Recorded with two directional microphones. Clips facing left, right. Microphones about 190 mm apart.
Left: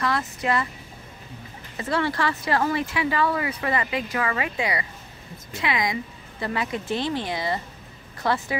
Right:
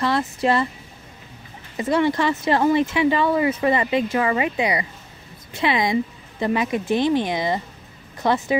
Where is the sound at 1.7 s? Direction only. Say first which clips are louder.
Right 6 dB; 20° right (ahead or behind).